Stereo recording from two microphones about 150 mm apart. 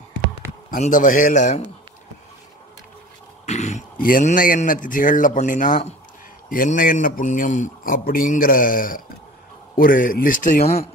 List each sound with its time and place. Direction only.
0.7 s speech: 60° left (ahead or behind)
3.4 s a sound: 50° left (ahead or behind)
4.0 s speech: 60° left (ahead or behind)
6.5 s a man's voice: 65° left (ahead or behind)